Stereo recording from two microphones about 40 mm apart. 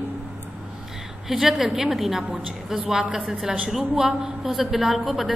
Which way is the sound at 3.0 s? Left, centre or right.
Right.